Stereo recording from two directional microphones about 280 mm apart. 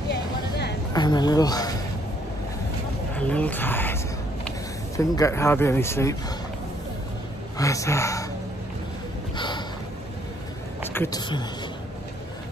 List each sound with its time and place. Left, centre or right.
0.1 s a sound: left
0.9 s speech: centre
3.2 s speech: centre
7.5 s speech: centre
10.9 s speech: centre